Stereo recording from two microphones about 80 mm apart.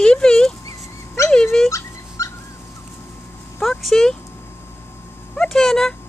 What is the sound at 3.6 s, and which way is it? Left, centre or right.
Speech, centre.